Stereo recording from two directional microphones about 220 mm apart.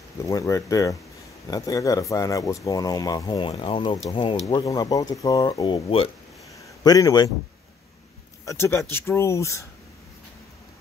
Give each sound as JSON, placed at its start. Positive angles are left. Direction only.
{"t": 0.3, "sound": "speech", "side_deg": 15}
{"t": 6.5, "sound": "a sound", "side_deg": 15}
{"t": 8.5, "sound": "speech", "side_deg": 10}